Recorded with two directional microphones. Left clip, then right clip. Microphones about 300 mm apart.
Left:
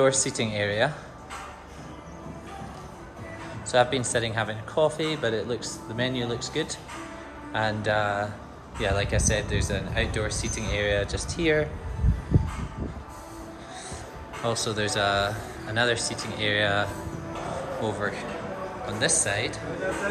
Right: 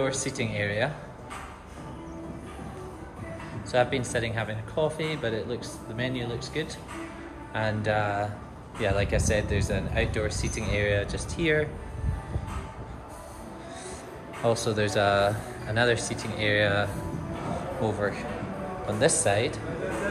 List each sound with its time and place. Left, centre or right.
0.0 s speech: centre
3.7 s speech: centre
14.4 s speech: centre